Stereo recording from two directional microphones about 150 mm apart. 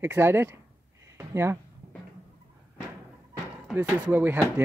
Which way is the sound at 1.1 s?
15° right (ahead or behind).